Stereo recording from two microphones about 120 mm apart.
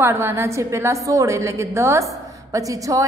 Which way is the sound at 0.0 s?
20° right (ahead or behind).